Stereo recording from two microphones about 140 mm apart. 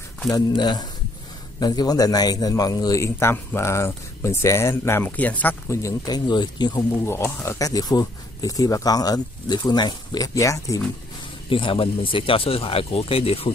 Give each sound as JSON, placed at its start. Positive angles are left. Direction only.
{"t": 0.3, "sound": "a man's voice", "side_deg": 30}
{"t": 7.1, "sound": "a man's voice", "side_deg": 20}
{"t": 11.4, "sound": "speech", "side_deg": 40}